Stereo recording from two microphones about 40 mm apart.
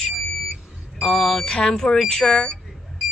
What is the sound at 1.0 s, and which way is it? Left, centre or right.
Speech, centre.